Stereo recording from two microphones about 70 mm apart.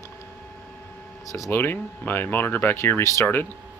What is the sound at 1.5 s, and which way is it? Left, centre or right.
Speech, left.